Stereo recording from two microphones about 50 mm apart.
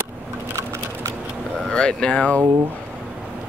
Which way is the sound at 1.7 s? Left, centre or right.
Centre.